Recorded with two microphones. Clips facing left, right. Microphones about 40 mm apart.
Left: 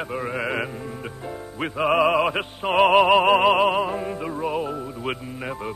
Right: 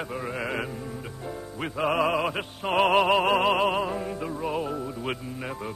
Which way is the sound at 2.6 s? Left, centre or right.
Centre.